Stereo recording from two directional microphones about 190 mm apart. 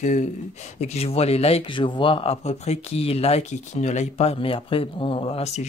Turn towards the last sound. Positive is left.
turn(degrees=35)  # may be behind; listen again after turning